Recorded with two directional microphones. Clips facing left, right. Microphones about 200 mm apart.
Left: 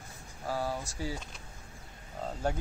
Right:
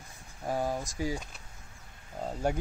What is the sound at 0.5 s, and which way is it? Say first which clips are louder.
Speech: right 3 dB; 20° right (ahead or behind).